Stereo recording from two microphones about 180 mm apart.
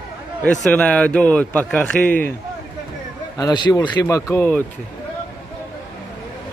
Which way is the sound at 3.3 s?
25° left (ahead or behind).